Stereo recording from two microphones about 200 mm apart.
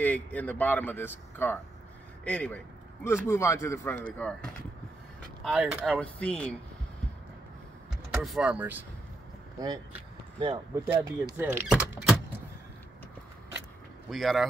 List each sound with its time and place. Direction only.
0.0 s a man's voice: 10° left (ahead or behind)
5.4 s a man's voice: centre (ahead or behind)
8.1 s speech: centre (ahead or behind)
10.4 s speech: 25° right (ahead or behind)
11.1 s speech: 10° right (ahead or behind)
14.1 s speech: centre (ahead or behind)